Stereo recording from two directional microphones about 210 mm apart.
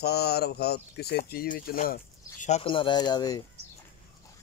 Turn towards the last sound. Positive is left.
turn(degrees=20)  # may be behind; listen again after turning